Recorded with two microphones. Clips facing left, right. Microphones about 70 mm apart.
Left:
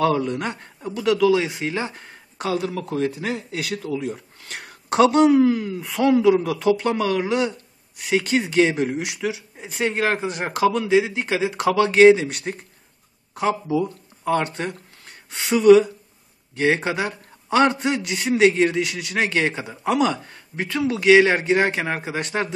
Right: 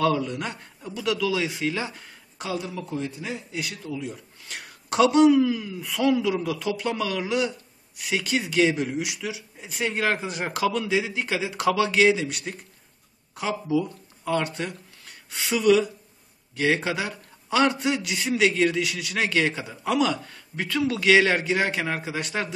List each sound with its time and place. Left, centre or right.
0.0 s speech: left
2.3 s speech: left
2.9 s speech: left
4.0 s a man's voice: left